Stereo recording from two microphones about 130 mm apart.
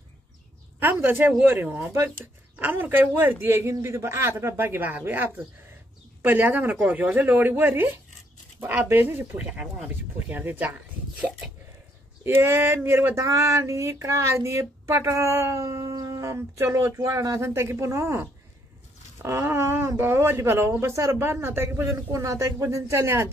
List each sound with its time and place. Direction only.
1.0 s speech: 15° right (ahead or behind)